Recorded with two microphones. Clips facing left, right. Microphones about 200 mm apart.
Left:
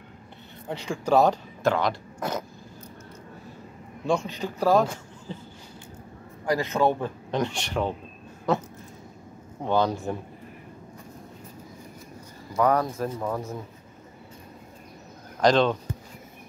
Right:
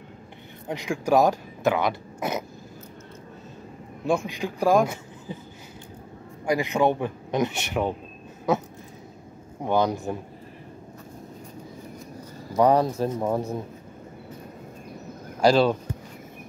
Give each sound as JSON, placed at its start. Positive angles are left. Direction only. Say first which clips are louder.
{"t": 0.7, "sound": "speech", "louder": "right 1 dB", "side_deg": -15}
{"t": 4.0, "sound": "a man's voice", "louder": "right 1 dB", "side_deg": -10}
{"t": 6.4, "sound": "speech", "louder": "right 1 dB", "side_deg": -15}
{"t": 9.7, "sound": "speech", "louder": "right 1 dB", "side_deg": -15}
{"t": 12.5, "sound": "speech", "louder": "right 3 dB", "side_deg": -30}
{"t": 15.4, "sound": "speech", "louder": "right 2 dB", "side_deg": -10}